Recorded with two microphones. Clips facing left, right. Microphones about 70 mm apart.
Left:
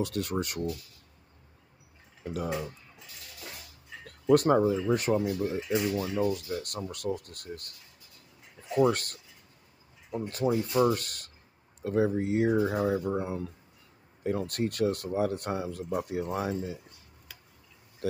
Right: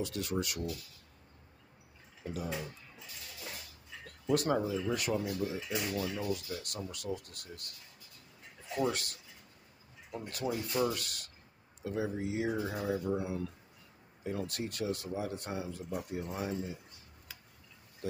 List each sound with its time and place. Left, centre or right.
0.0 s speech: left
2.3 s speech: left
4.3 s speech: left
6.3 s speech: left
8.7 s speech: left
10.1 s speech: left
12.8 s speech: left
16.0 s speech: left